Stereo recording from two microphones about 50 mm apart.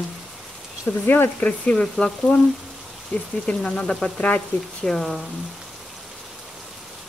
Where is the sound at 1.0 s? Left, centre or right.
Left.